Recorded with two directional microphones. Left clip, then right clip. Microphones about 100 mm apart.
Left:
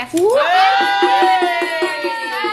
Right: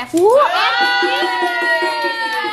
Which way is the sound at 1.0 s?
20° left (ahead or behind).